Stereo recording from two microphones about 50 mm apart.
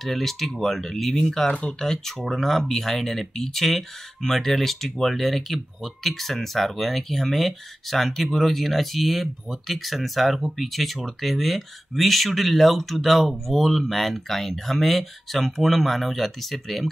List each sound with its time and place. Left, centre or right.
0.0 s speech: centre
1.5 s speech: left
1.8 s speech: centre